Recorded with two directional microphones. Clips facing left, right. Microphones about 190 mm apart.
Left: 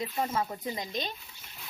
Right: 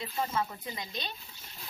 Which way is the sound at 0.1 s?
25° left (ahead or behind).